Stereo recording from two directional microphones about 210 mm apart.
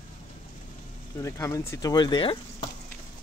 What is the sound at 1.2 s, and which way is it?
Speech, 15° left (ahead or behind).